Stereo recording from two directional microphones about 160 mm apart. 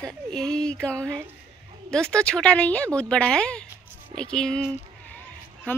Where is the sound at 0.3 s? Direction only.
5° left (ahead or behind).